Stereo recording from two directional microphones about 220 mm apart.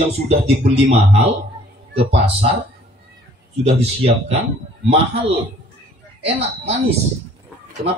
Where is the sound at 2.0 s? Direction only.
25° right (ahead or behind).